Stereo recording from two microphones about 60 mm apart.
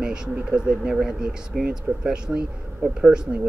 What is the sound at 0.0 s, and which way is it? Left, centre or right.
Speech, centre.